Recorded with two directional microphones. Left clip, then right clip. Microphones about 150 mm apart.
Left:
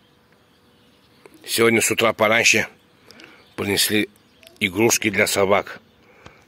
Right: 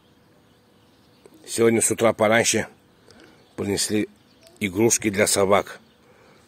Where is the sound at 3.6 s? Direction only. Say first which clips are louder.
Left 4 dB; 10° right (ahead or behind).